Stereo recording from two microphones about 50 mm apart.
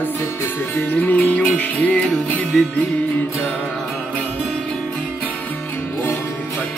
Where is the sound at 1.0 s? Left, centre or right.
Left.